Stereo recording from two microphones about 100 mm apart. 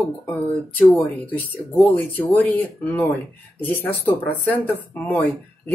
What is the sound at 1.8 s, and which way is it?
Speech, 20° left (ahead or behind).